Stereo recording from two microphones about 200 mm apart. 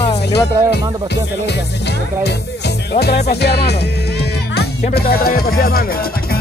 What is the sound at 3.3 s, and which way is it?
Music, 55° left (ahead or behind).